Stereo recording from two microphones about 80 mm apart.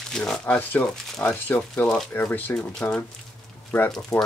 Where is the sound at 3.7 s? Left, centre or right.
Left.